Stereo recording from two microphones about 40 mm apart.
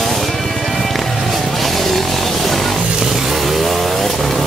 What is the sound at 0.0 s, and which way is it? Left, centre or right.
Music, centre.